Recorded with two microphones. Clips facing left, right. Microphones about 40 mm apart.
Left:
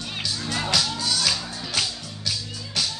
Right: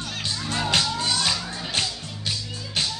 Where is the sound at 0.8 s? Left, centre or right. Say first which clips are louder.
Right 1 dB; right.